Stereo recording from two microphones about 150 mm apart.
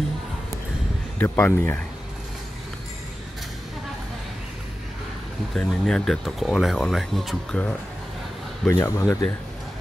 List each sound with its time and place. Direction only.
1.1 s speech: 15° left (ahead or behind)
5.5 s speech: 5° left (ahead or behind)
8.7 s speech: 20° left (ahead or behind)